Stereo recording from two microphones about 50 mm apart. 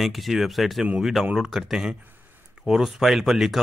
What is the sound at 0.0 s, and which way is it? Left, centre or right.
Speech, centre.